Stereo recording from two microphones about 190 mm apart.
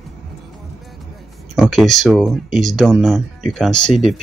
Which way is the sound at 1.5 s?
Centre (ahead or behind).